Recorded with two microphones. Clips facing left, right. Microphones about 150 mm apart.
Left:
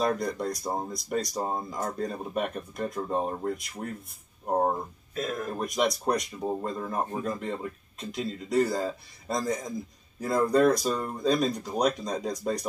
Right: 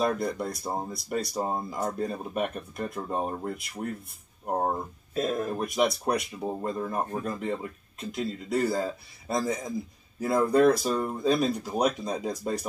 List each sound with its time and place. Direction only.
0.0 s speech: 5° right (ahead or behind)
5.1 s speech: 30° right (ahead or behind)
5.5 s speech: 5° right (ahead or behind)